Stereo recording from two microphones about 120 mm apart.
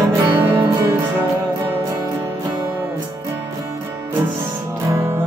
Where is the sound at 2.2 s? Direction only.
30° right (ahead or behind).